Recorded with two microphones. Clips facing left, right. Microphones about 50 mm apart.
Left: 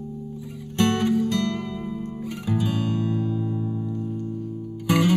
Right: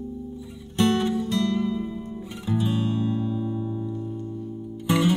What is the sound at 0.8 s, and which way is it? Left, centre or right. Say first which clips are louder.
Music: left 2 dB; left.